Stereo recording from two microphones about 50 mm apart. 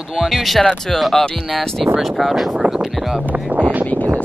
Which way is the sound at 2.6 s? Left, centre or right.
Right.